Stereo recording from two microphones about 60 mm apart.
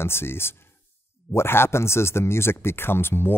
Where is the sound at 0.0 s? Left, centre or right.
Left.